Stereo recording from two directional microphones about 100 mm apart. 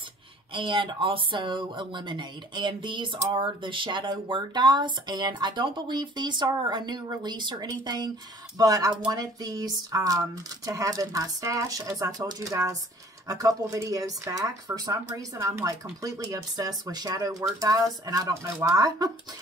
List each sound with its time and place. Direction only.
0.5 s speech: 60° right (ahead or behind); by 19.1 s 35° right (ahead or behind)